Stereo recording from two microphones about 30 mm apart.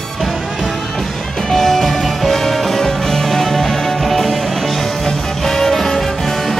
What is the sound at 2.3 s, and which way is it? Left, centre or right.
Music, centre.